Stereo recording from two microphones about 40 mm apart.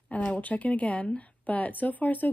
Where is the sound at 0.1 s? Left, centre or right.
Left.